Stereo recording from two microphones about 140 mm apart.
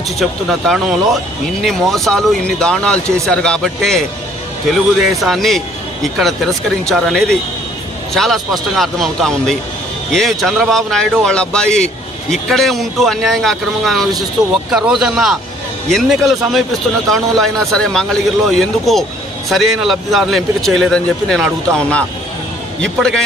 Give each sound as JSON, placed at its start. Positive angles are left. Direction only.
{"t": 0.2, "sound": "a man's voice", "side_deg": 0}